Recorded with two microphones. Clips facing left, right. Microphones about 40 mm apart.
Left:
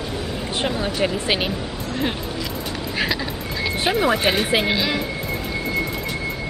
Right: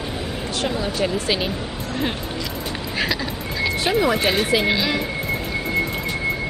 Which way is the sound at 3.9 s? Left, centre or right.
Centre.